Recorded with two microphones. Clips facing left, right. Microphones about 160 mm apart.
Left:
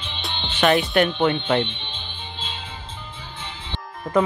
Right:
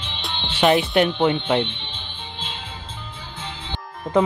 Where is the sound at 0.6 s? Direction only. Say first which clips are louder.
Right 1 dB; 20° right (ahead or behind).